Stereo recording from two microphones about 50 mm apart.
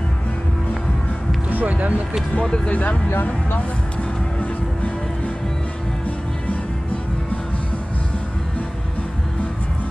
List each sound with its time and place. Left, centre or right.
1.5 s speech: right
2.3 s speech: centre
3.1 s speech: left
4.4 s music: left